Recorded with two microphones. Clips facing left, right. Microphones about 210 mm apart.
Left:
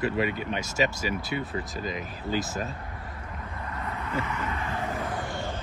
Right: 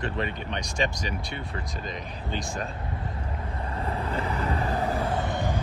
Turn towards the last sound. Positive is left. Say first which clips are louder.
# right 4 dB
turn(degrees=-20)  # may be behind; listen again after turning